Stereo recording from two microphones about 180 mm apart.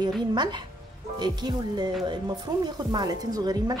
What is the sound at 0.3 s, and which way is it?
Speech, 25° right (ahead or behind).